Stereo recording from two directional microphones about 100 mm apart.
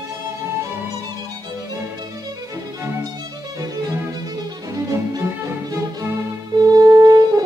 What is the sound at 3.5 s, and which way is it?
Music, 40° right (ahead or behind).